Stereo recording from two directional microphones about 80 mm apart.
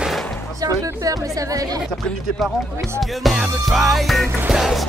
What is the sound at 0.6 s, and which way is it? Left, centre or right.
Speech, right.